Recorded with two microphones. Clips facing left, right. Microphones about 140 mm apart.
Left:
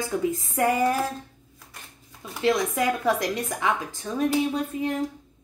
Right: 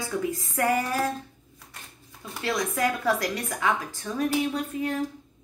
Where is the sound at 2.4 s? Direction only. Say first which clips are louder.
Left 4 dB; 20° left (ahead or behind).